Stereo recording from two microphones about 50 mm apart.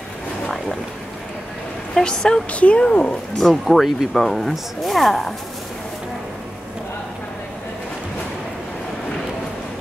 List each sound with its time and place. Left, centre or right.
2.0 s a woman's voice: centre
2.5 s speech: left
3.3 s speech: centre